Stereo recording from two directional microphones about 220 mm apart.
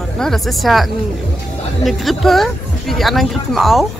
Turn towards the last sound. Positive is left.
turn(degrees=0)  # may be behind; listen again after turning